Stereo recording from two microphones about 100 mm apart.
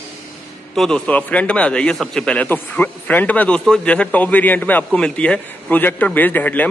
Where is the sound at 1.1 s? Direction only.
15° left (ahead or behind).